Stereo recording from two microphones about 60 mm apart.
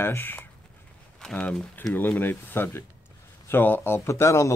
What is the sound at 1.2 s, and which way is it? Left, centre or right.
Speech, centre.